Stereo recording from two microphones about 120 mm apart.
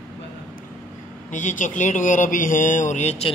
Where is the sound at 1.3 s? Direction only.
90° left; by 3.2 s 70° left (ahead or behind).